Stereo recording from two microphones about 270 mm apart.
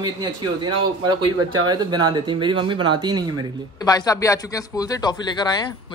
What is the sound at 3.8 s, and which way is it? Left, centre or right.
Speech, centre.